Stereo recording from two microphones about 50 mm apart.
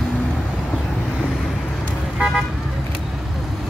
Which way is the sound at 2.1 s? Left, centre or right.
Centre.